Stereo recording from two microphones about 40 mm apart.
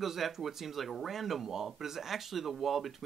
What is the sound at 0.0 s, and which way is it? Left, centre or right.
Speech, centre.